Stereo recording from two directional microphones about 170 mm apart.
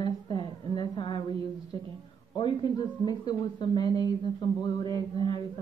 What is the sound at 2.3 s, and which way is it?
Speech, 25° left (ahead or behind).